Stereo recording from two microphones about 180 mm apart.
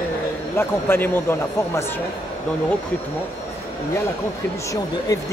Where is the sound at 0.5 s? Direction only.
15° left (ahead or behind).